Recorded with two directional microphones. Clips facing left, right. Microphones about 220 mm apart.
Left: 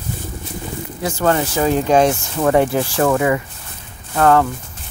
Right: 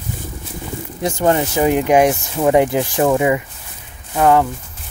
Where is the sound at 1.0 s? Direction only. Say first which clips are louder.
Right 1 dB; 20° right (ahead or behind).